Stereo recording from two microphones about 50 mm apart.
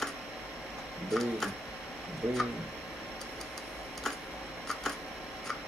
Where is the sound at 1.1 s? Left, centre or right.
Centre.